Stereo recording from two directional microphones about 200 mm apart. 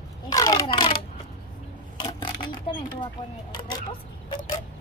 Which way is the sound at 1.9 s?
25° left (ahead or behind).